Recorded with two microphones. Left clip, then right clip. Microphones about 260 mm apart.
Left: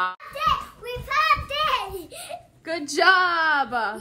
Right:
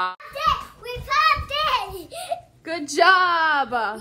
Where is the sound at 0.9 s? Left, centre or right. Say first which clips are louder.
Right 2 dB; centre.